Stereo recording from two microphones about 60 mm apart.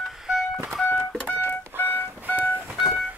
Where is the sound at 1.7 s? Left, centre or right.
Right.